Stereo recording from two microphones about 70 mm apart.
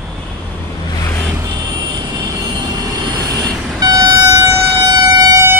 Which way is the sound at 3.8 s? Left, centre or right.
Right.